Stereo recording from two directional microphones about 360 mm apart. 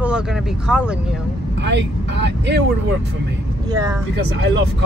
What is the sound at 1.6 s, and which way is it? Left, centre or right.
Speech, right.